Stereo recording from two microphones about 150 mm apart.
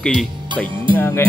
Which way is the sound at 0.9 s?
15° left (ahead or behind).